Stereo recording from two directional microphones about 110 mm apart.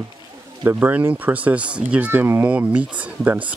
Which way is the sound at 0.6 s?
20° right (ahead or behind).